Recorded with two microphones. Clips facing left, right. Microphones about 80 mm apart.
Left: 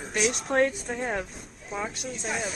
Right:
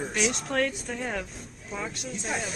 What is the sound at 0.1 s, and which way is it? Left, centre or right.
Speech, centre.